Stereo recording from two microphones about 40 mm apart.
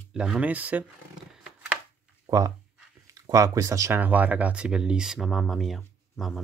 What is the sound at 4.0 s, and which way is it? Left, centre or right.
Speech, right.